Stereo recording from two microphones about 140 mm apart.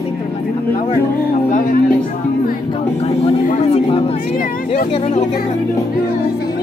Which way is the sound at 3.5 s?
50° left (ahead or behind).